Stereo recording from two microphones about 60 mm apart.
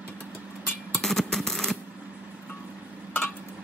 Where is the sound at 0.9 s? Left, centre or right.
Centre.